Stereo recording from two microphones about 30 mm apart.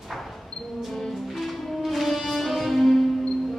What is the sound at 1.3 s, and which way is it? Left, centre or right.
Music, centre.